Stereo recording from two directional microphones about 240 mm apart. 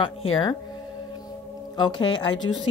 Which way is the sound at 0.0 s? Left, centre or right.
Left.